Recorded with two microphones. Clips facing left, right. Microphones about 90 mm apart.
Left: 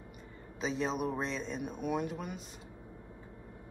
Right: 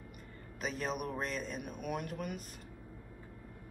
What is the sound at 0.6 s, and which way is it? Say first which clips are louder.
A man's voice: left 4 dB; 20° left (ahead or behind).